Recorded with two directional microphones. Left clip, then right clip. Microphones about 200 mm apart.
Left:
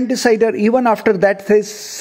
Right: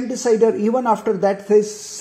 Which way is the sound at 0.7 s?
55° left (ahead or behind).